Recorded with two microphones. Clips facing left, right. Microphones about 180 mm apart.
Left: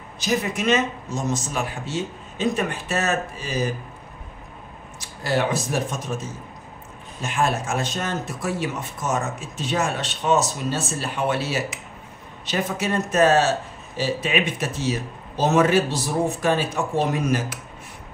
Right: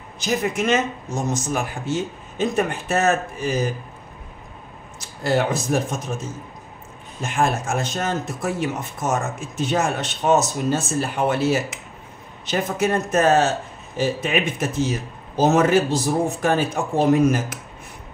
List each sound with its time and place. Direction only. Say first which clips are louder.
0.2 s a man's voice: right 1 dB; 50° right (ahead or behind)
5.2 s a man's voice: right 2 dB; 50° right (ahead or behind)